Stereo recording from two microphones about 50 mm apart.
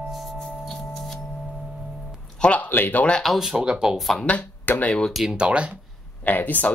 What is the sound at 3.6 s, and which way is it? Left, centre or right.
Speech, centre.